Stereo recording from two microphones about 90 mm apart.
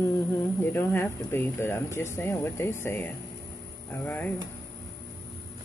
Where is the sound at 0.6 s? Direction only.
25° left (ahead or behind).